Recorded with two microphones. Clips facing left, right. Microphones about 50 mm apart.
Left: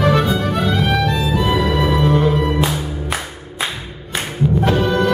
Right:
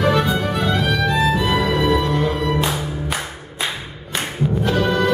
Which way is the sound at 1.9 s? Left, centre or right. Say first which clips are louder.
Left 2 dB; left.